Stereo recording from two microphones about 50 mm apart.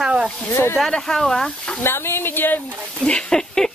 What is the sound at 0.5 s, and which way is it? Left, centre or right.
Speech, left.